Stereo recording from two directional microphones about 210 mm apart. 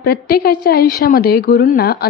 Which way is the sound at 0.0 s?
45° left (ahead or behind).